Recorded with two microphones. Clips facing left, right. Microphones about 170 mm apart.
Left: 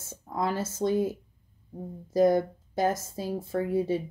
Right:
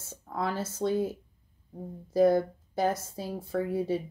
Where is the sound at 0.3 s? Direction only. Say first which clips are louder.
Left 2 dB; 15° left (ahead or behind).